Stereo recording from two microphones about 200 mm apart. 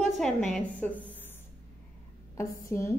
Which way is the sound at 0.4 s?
40° left (ahead or behind).